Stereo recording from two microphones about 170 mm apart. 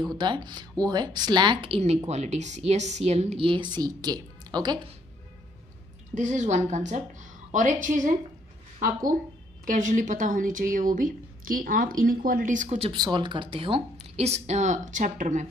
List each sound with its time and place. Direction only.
0.1 s speech: 25° right (ahead or behind)
6.1 s a woman's voice: 45° right (ahead or behind)
12.9 s a woman's voice: 25° right (ahead or behind); by 15.5 s 45° right (ahead or behind)